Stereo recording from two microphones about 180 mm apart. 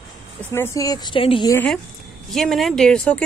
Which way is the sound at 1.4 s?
10° left (ahead or behind).